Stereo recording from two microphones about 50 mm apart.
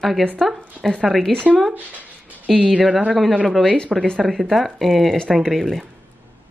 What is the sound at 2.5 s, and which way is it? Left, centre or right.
Speech, centre.